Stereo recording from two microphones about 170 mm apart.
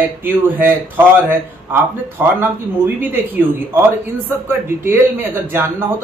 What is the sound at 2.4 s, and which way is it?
Speech, 10° right (ahead or behind).